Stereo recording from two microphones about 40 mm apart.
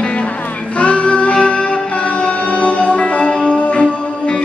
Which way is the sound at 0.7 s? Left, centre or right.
Left.